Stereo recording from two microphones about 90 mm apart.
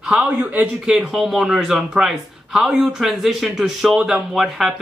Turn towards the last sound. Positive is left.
turn(degrees=-5)  # may be behind; listen again after turning